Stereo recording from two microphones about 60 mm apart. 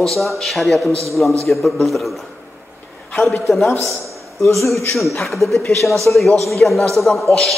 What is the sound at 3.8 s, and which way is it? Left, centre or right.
Speech, right.